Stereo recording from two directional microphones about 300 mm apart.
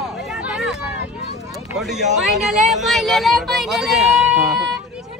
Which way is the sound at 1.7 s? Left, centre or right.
Centre.